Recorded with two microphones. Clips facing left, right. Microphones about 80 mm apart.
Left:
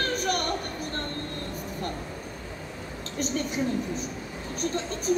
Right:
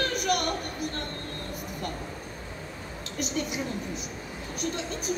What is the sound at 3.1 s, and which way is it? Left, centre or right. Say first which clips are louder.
Speech: left 2 dB; left.